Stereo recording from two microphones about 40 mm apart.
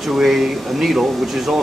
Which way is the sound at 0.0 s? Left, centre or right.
Centre.